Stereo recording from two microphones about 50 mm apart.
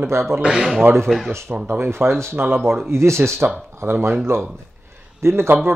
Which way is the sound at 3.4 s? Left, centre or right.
Right.